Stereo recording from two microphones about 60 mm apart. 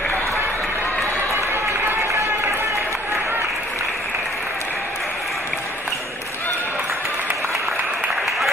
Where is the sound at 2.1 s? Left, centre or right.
Right.